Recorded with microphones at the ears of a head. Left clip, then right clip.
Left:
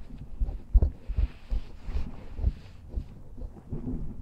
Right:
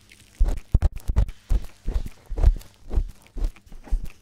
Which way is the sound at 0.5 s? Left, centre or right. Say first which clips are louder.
Right 6 dB; right.